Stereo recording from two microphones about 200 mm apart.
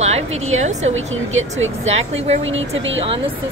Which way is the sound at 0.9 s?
75° right (ahead or behind).